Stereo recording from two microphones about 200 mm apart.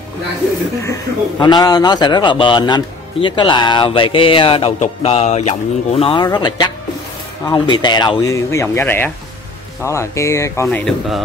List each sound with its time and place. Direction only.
1.4 s speech: 20° left (ahead or behind); by 11.1 s 5° left (ahead or behind)